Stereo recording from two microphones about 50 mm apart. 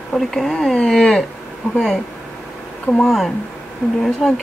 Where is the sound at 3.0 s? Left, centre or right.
Centre.